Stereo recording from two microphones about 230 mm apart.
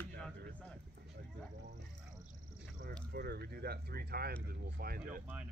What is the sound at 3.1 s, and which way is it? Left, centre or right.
Speech, right.